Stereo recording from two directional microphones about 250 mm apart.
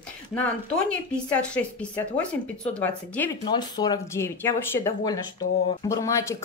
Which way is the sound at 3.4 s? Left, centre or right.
Centre.